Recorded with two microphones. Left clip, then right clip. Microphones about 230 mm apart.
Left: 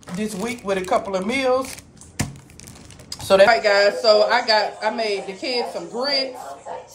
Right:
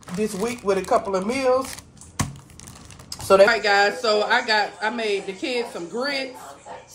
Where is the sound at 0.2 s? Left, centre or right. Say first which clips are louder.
Right 2 dB; right.